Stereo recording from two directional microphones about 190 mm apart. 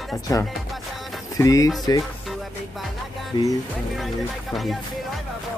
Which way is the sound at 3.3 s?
25° left (ahead or behind).